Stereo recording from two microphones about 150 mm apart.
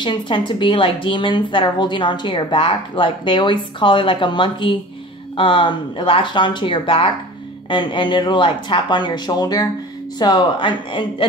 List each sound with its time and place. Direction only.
0.0 s a woman's voice: 30° left (ahead or behind)